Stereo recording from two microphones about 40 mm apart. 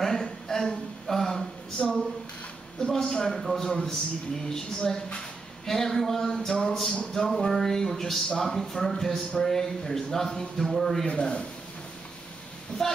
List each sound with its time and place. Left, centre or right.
0.0 s a sound: centre
2.8 s a man's voice: centre
11.1 s speech: left
12.8 s a man's voice: centre